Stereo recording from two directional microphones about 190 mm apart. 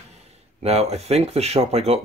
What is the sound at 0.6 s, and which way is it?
Speech, 35° right (ahead or behind).